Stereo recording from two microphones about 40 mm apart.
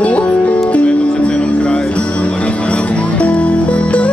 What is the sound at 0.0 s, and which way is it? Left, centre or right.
Music, left.